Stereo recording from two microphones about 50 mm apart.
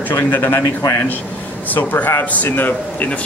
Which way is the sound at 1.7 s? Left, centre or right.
Left.